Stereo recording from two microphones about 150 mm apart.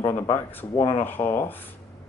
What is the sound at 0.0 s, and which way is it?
Speech, 15° left (ahead or behind).